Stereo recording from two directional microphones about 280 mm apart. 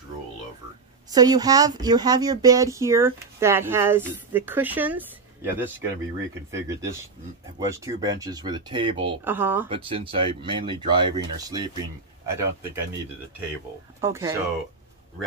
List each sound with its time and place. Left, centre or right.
1.1 s speech: centre
9.2 s speech: centre
9.7 s speech: centre
14.0 s speech: centre